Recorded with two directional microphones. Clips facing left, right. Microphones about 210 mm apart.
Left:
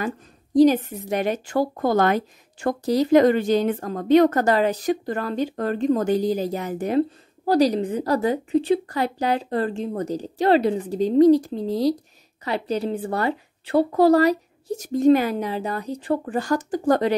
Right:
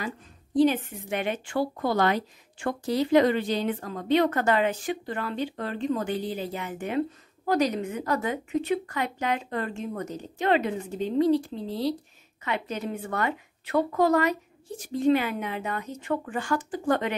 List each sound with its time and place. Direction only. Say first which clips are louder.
0.6 s a woman's voice: left 6 dB; 40° left (ahead or behind)